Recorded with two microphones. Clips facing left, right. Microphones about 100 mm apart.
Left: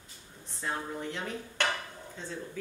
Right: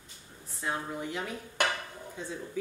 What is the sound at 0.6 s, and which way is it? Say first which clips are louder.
Dishes: right 1 dB; 10° right (ahead or behind).